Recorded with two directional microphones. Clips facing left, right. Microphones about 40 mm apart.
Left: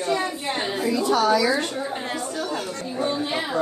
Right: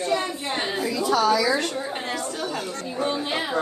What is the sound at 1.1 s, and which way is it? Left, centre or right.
Speech, left.